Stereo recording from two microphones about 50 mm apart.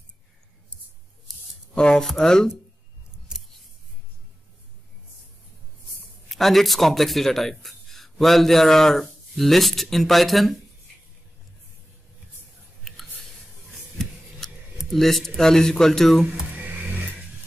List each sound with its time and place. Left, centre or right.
2.0 s speech: centre
3.3 s scissors: centre
6.2 s speech: centre
12.8 s a sound: centre
15.0 s speech: centre
16.5 s music: right
16.9 s dog: right